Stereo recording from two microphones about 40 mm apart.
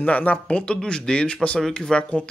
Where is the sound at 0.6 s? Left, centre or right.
Left.